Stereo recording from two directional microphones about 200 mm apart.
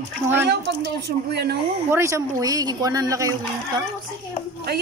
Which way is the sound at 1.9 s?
15° right (ahead or behind).